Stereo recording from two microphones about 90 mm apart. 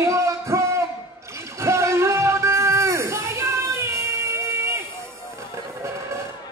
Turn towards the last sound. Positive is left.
turn(degrees=-30)  # may be behind; listen again after turning